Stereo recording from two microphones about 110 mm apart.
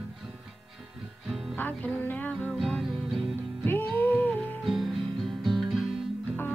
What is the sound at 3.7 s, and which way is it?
Music, 20° left (ahead or behind).